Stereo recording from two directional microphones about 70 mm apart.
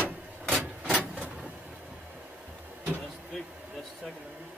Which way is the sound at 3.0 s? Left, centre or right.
Centre.